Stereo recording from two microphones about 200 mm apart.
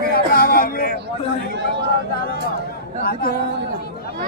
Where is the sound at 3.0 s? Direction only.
50° left (ahead or behind).